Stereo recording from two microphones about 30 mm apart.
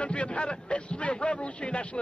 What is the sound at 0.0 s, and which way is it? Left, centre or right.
A man's voice, left.